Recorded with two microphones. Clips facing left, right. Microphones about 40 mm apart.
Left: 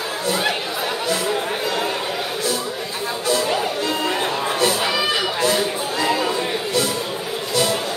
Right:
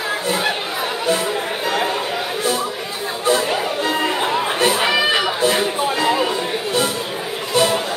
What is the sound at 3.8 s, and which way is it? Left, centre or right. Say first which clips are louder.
Music: right 3 dB; right.